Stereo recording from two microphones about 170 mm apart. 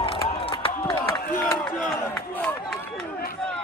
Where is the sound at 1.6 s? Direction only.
10° left (ahead or behind).